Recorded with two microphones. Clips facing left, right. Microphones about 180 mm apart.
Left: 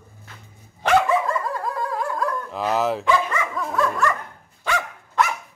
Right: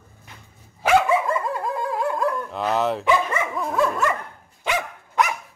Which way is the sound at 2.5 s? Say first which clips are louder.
Even; centre (ahead or behind).